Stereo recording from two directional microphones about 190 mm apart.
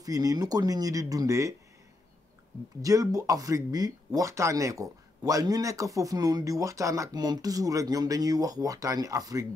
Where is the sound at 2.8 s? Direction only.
20° right (ahead or behind).